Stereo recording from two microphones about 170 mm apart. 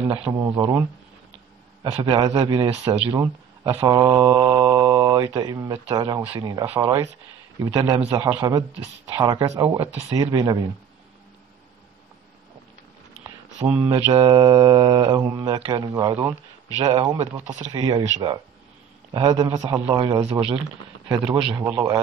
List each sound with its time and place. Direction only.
0.3 s speech: 20° right (ahead or behind)
7.8 s speech: 35° right (ahead or behind)
8.3 s speech: 20° right (ahead or behind)
13.8 s speech: 30° right (ahead or behind)
16.7 s speech: 30° right (ahead or behind)
21.1 s speech: 25° right (ahead or behind)